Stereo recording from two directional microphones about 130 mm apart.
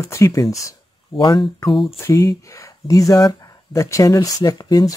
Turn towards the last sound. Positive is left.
turn(degrees=30)  # may be behind; listen again after turning